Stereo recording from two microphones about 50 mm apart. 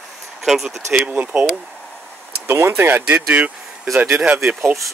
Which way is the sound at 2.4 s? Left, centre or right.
Right.